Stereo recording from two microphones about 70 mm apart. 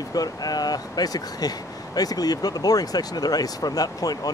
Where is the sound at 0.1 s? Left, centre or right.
Left.